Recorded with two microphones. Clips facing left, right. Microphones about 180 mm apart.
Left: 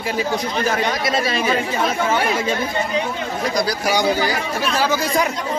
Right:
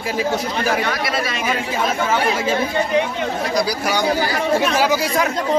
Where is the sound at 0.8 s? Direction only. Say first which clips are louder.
Left 2 dB; 20° left (ahead or behind).